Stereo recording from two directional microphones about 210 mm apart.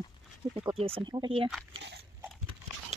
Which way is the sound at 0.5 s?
25° right (ahead or behind).